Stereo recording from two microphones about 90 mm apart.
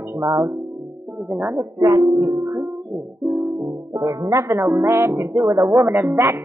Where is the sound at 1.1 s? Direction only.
20° right (ahead or behind).